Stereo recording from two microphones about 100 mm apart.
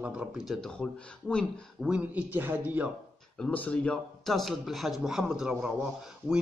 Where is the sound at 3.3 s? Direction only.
5° left (ahead or behind).